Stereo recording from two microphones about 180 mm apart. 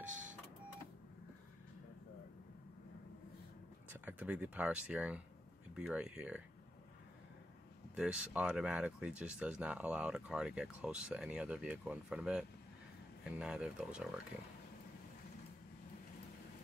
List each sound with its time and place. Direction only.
0.0 s printer: 45° right (ahead or behind)
4.0 s speech: 10° right (ahead or behind)
7.9 s speech: 5° right (ahead or behind)